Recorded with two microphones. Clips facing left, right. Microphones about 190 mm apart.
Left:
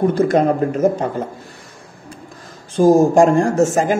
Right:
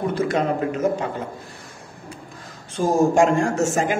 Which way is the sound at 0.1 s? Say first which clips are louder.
Left 6 dB; 40° left (ahead or behind).